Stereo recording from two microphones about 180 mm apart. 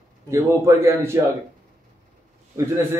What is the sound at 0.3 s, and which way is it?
Speech, 15° right (ahead or behind).